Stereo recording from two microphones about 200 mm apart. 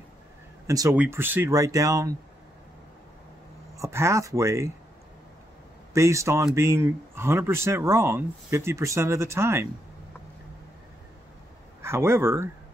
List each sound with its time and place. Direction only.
0.7 s speech: 15° right (ahead or behind)
3.7 s speech: 15° right (ahead or behind)
5.9 s speech: 15° right (ahead or behind)
11.8 s speech: 10° right (ahead or behind)